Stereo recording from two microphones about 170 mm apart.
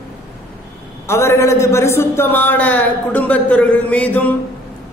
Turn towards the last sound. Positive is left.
turn(degrees=10)  # may be behind; listen again after turning